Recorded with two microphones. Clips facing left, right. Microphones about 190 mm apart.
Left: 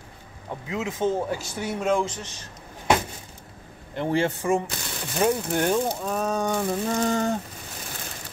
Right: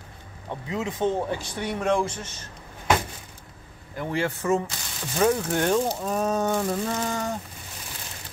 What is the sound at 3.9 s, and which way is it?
Speech, 25° left (ahead or behind).